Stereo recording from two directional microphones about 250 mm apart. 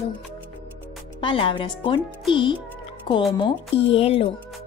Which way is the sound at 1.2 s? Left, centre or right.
Centre.